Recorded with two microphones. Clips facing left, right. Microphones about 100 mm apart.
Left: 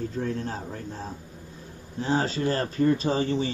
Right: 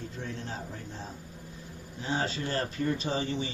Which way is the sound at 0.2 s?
40° left (ahead or behind).